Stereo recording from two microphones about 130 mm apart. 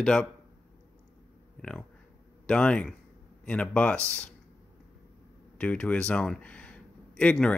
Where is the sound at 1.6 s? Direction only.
5° left (ahead or behind).